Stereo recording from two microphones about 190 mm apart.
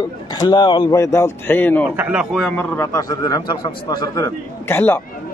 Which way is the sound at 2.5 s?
15° left (ahead or behind).